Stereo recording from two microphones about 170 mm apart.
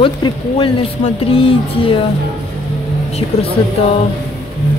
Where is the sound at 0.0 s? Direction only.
30° left (ahead or behind).